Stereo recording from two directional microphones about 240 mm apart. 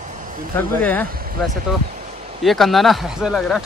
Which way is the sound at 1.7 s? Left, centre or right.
Centre.